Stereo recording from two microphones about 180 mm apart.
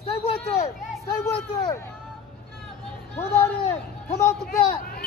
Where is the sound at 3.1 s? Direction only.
15° left (ahead or behind).